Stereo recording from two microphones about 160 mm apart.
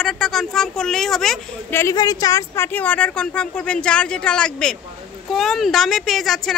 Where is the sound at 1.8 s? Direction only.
20° left (ahead or behind); by 6.5 s centre (ahead or behind).